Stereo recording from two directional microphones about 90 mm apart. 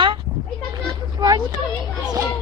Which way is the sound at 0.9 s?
45° right (ahead or behind).